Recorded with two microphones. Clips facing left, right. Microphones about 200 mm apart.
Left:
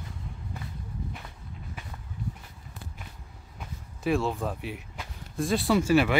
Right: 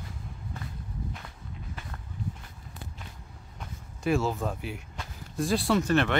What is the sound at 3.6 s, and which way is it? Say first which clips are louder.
Speech: left 1 dB; centre (ahead or behind).